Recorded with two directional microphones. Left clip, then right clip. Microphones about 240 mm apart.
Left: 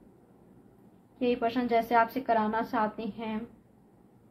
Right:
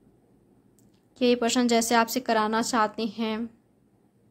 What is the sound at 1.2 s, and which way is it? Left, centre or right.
A woman's voice, right.